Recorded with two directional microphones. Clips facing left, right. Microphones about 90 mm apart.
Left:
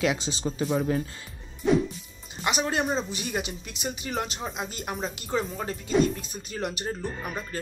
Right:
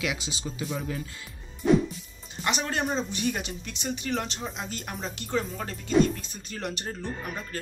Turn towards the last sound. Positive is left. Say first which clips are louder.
# left 3 dB
turn(degrees=15)  # may be behind; listen again after turning